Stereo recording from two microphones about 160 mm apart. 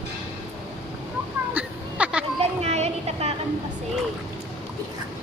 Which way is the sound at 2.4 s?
45° right (ahead or behind).